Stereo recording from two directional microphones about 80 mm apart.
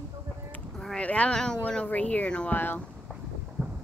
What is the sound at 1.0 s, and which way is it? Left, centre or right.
Speech, centre.